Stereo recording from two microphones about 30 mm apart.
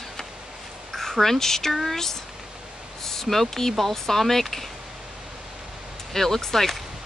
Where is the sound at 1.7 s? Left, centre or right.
Centre.